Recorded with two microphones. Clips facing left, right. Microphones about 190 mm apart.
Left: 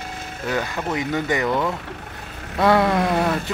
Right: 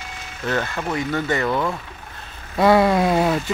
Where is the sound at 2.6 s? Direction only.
5° right (ahead or behind).